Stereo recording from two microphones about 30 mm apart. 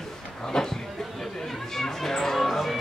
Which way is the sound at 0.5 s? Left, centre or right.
Centre.